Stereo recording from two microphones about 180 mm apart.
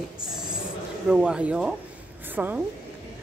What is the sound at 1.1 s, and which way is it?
A woman's voice, 5° right (ahead or behind).